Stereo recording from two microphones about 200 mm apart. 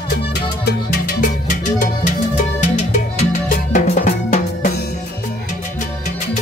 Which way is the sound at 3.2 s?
35° left (ahead or behind).